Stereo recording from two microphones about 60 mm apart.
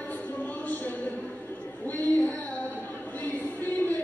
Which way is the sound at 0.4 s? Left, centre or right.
Left.